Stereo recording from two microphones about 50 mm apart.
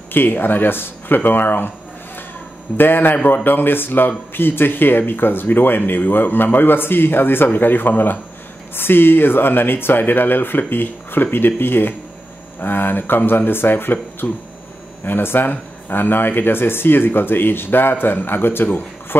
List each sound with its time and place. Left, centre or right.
0.1 s speech: left
2.8 s speech: left